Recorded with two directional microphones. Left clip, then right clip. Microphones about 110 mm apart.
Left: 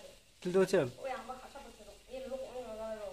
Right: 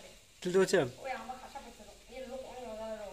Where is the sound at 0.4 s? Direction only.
10° left (ahead or behind).